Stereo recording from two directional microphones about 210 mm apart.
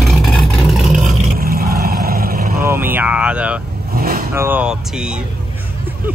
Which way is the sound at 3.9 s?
45° right (ahead or behind).